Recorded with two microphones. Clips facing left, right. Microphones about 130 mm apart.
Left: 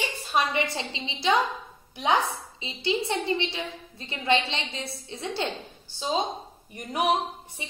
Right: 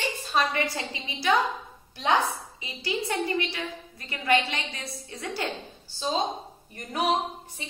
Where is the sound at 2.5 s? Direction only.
25° left (ahead or behind).